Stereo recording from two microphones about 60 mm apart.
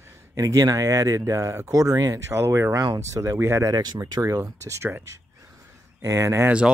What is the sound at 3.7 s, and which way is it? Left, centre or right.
Speech, right.